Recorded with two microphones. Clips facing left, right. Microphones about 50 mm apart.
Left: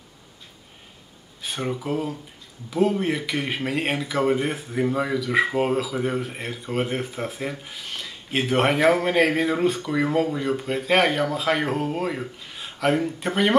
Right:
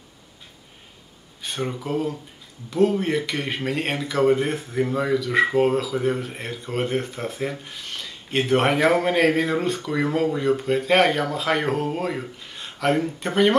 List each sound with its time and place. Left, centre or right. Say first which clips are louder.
1.4 s speech: even; centre